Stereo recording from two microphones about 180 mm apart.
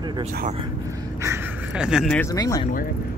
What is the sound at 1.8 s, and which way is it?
Speech, 5° right (ahead or behind).